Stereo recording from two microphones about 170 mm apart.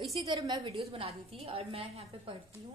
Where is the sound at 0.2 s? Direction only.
25° right (ahead or behind).